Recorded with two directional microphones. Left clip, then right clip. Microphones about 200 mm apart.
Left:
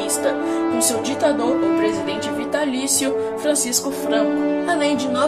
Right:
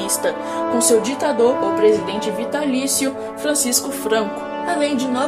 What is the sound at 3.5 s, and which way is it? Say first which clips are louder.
Music: even; 30° right (ahead or behind).